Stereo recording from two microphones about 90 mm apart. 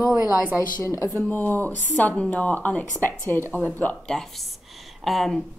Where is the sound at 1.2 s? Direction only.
20° left (ahead or behind); by 5.4 s 5° left (ahead or behind).